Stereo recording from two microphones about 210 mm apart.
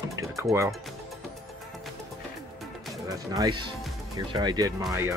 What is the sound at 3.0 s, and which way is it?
Speech, 15° right (ahead or behind).